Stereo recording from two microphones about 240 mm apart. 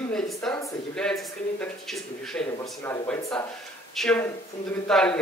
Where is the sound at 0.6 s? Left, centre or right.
Centre.